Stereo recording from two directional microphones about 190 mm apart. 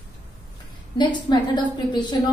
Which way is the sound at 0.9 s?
25° left (ahead or behind).